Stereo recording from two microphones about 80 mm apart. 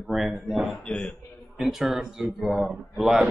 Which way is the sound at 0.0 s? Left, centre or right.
Centre.